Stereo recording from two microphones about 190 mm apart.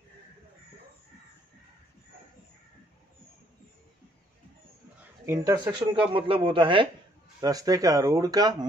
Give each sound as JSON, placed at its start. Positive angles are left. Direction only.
{"t": 5.2, "sound": "speech", "side_deg": -15}